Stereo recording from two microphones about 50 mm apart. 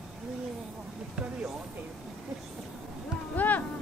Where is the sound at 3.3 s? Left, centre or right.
Left.